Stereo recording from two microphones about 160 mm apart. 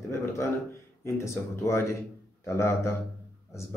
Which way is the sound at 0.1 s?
15° left (ahead or behind).